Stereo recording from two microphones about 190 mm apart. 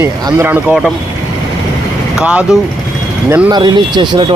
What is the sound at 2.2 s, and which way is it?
Speech, 5° right (ahead or behind).